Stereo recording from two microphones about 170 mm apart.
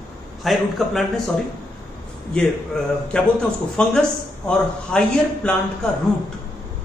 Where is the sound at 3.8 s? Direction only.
5° left (ahead or behind).